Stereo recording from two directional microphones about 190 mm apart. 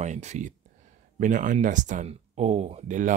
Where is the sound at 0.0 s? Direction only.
40° right (ahead or behind).